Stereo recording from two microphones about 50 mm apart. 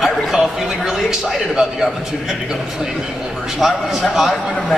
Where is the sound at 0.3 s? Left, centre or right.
Centre.